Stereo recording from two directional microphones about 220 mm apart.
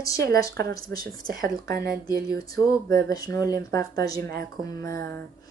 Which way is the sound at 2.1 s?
45° right (ahead or behind).